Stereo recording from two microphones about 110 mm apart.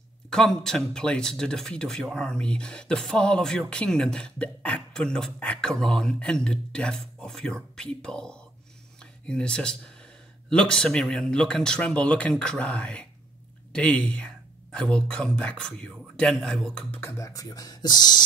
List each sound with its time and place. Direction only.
0.3 s speech: 5° left (ahead or behind)
17.0 s speech: 30° left (ahead or behind)